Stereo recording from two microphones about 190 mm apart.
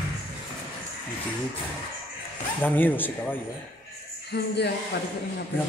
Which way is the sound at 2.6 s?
10° left (ahead or behind).